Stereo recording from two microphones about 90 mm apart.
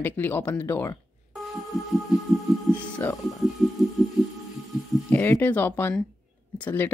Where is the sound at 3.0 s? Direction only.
20° left (ahead or behind).